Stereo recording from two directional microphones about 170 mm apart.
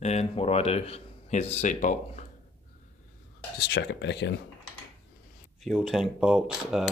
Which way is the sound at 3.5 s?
80° left.